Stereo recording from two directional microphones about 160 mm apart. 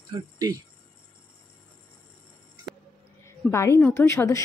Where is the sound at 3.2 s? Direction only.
15° left (ahead or behind).